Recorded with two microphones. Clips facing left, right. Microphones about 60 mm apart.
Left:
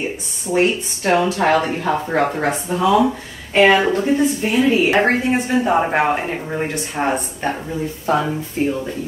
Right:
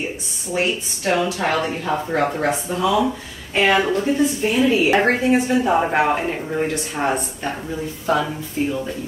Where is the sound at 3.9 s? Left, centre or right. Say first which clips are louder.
Left 2 dB; centre.